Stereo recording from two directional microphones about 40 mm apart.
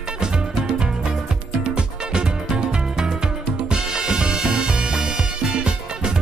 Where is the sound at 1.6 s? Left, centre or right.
Right.